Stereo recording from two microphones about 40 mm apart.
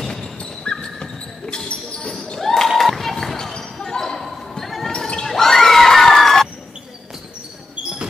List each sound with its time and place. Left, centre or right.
0.4 s basketball bounce: left
2.4 s a sound: centre
3.5 s basketball bounce: centre
4.2 s basketball bounce: centre
4.9 s basketball bounce: left
5.2 s crowd: centre